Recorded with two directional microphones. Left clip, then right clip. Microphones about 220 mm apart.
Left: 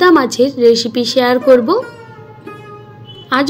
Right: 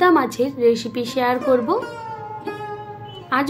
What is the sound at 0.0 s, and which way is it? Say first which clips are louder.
A woman's voice: left 6 dB; 15° left (ahead or behind).